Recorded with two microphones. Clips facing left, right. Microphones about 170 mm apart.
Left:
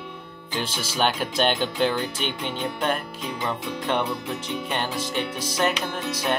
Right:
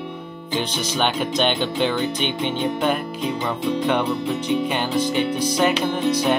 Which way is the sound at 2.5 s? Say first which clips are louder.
Right 6 dB; 25° right (ahead or behind).